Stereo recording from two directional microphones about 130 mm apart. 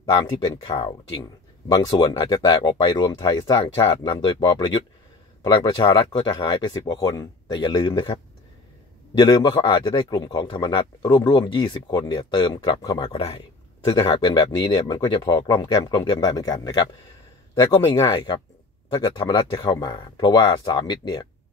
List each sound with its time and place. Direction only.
0.7 s speech: 35° left (ahead or behind)
9.2 s speech: 35° left (ahead or behind)